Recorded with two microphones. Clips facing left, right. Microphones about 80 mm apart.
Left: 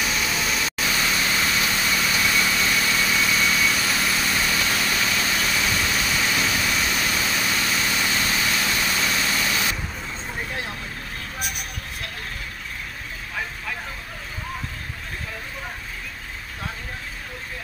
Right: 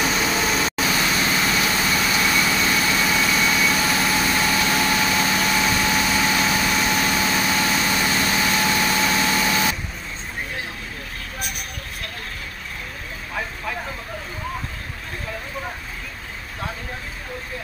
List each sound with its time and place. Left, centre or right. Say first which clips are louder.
0.0 s vehicle: right 4 dB; right
0.7 s vehicle: right 3 dB; right
4.8 s engine: right 4 dB; right